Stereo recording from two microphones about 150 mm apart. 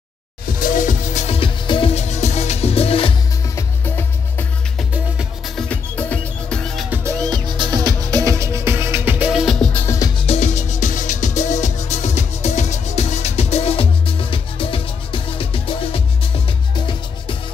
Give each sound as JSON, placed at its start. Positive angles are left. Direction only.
{"t": 0.5, "sound": "music", "side_deg": 65}
{"t": 3.4, "sound": "music", "side_deg": 15}
{"t": 4.7, "sound": "music", "side_deg": -5}
{"t": 5.7, "sound": "music", "side_deg": 10}
{"t": 6.9, "sound": "music", "side_deg": -20}
{"t": 9.8, "sound": "music", "side_deg": 25}
{"t": 10.2, "sound": "music", "side_deg": 45}